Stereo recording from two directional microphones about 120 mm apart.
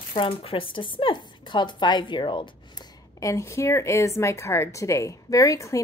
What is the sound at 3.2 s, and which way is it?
A woman's voice, 25° left (ahead or behind).